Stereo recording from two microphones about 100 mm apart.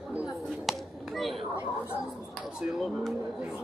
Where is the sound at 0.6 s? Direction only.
Centre (ahead or behind).